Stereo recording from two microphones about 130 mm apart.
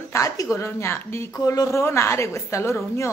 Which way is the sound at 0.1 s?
25° left (ahead or behind).